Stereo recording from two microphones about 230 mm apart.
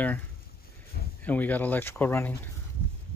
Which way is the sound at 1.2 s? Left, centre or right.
Centre.